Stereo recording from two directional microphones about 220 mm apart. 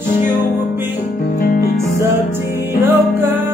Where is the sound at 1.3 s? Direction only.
40° left (ahead or behind).